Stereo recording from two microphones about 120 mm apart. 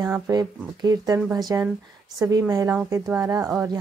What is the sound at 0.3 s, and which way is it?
Speech, 35° right (ahead or behind).